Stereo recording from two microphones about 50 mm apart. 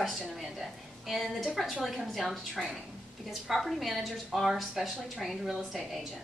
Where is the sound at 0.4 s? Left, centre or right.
Centre.